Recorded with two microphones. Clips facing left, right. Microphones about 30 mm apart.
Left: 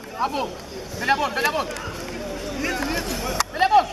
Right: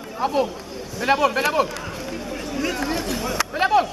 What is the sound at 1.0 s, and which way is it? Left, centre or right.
Speech, centre.